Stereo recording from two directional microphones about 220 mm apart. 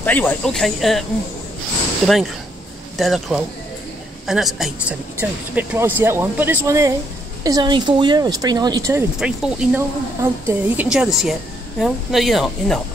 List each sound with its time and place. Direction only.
0.0 s a woman's voice: 10° left (ahead or behind)
2.0 s a woman's voice: centre (ahead or behind); by 9.0 s 15° right (ahead or behind)
9.2 s a woman's voice: 5° right (ahead or behind)